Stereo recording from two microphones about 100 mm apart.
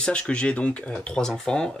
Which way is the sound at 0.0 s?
10° left (ahead or behind).